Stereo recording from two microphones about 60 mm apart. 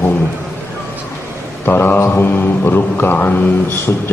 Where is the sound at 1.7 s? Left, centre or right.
Left.